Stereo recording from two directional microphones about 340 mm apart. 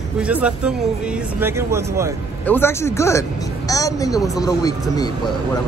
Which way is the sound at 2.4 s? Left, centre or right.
Centre.